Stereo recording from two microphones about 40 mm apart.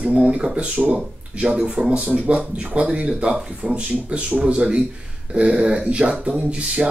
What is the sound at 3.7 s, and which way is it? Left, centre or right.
Speech, right.